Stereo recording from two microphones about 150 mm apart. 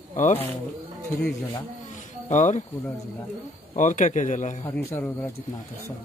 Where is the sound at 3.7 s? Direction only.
55° left (ahead or behind).